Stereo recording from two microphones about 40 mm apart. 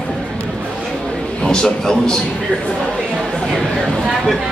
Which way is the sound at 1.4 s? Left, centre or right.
Centre.